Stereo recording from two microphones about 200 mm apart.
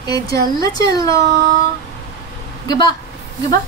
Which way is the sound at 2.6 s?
20° left (ahead or behind).